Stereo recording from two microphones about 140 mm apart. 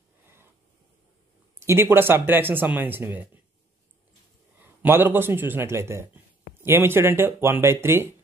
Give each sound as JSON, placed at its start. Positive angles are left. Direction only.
{"t": 1.6, "sound": "speech", "side_deg": -15}
{"t": 4.6, "sound": "a man's voice", "side_deg": -15}